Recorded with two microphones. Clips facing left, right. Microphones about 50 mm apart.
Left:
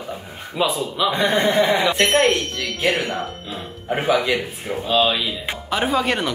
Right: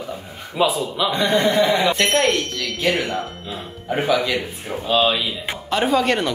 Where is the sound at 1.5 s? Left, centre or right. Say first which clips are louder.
Even; centre.